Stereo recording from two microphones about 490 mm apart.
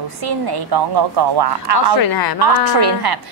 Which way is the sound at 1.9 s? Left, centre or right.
Left.